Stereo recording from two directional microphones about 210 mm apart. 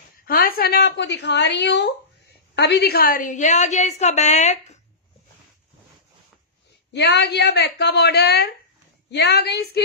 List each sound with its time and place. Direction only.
0.3 s a woman's voice: 45° left (ahead or behind)
6.9 s a woman's voice: 55° left (ahead or behind)